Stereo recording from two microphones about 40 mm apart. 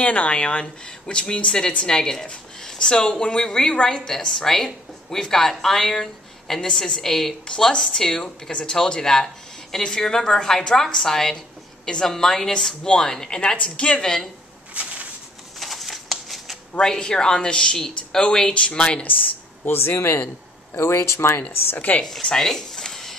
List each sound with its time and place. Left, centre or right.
0.0 s speech: left; by 4.3 s centre
4.3 s speech: centre
12.8 s speech: left
14.0 s speech: centre
14.7 s a sound: right
15.6 s shuffling cards: centre
16.8 s speech: centre
18.5 s speech: left
19.6 s speech: left
20.8 s speech: left
21.7 s a woman's voice: left
22.4 s a sound: centre